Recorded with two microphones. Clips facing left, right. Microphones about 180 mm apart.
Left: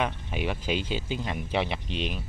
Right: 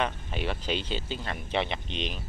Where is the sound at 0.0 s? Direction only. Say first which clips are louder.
Left 1 dB; 10° left (ahead or behind).